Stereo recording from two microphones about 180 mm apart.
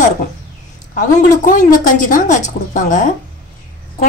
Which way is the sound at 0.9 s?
45° left (ahead or behind).